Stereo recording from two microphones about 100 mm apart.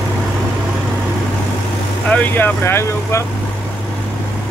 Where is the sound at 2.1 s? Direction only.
15° left (ahead or behind).